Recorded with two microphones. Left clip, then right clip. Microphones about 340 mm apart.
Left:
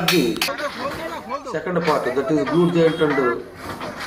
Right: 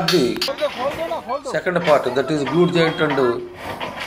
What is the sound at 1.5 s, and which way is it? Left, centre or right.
Speech, centre.